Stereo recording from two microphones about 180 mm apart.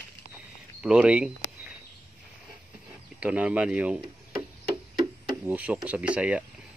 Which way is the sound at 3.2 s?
5° right (ahead or behind).